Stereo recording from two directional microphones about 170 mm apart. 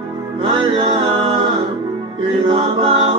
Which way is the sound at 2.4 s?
30° right (ahead or behind).